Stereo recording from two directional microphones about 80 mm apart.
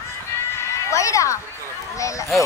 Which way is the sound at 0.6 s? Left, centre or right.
Left.